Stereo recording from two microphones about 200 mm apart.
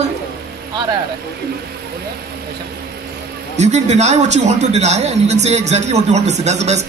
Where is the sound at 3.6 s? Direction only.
35° right (ahead or behind).